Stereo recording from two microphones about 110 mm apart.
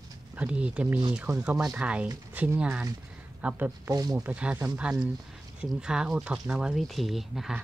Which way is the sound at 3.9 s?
35° right (ahead or behind).